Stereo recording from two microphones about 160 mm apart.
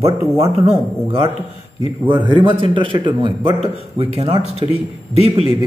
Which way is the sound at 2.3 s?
30° right (ahead or behind).